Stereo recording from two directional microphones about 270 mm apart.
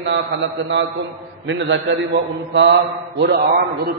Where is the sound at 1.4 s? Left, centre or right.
Right.